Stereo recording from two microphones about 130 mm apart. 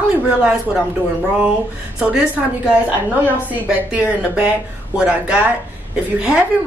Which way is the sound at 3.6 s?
10° right (ahead or behind).